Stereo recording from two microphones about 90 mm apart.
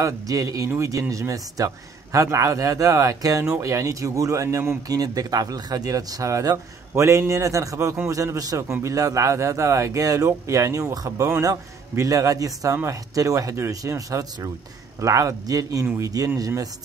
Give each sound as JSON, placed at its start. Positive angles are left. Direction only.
{"t": 0.0, "sound": "speech", "side_deg": -40}